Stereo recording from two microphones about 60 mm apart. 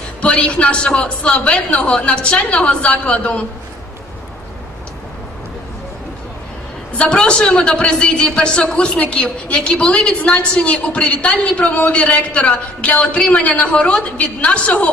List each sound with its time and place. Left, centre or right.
0.2 s a man's voice: centre
7.0 s a woman's voice: centre